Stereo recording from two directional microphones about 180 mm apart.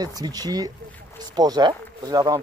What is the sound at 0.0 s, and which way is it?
Speech, 20° right (ahead or behind).